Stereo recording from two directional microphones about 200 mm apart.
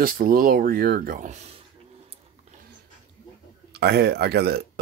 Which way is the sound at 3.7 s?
55° right (ahead or behind).